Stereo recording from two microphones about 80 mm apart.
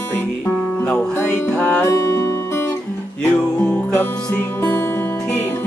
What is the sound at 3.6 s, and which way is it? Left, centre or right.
Music, left.